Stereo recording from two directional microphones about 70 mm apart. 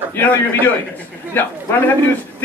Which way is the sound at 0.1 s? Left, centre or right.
Left.